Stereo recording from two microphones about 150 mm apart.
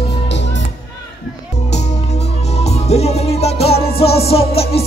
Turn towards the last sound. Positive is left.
turn(degrees=40)  # may be behind; listen again after turning